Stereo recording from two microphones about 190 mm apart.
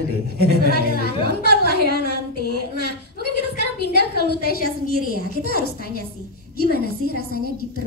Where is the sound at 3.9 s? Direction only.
55° left (ahead or behind).